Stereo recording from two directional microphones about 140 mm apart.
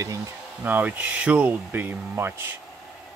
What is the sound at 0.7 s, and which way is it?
Speech, 10° right (ahead or behind).